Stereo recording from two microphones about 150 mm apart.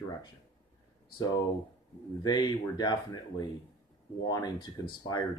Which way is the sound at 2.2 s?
30° left (ahead or behind).